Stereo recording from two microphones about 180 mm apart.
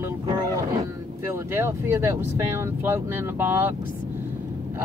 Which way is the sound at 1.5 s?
10° right (ahead or behind).